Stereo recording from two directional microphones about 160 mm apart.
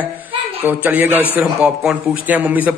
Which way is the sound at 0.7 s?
10° right (ahead or behind).